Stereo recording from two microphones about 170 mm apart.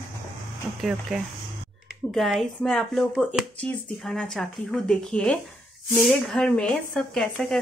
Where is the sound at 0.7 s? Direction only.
Centre (ahead or behind).